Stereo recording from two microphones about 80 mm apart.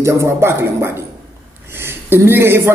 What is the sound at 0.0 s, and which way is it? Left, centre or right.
A man's voice, right.